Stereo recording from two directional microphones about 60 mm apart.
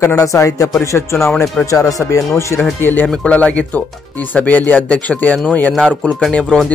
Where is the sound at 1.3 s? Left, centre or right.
Centre.